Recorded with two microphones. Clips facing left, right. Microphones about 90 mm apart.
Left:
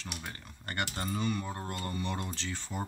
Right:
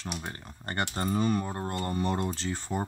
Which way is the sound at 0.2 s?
35° right (ahead or behind).